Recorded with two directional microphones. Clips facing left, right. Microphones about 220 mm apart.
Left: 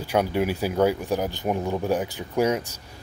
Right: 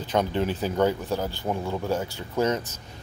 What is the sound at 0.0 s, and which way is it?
Speech, 10° left (ahead or behind).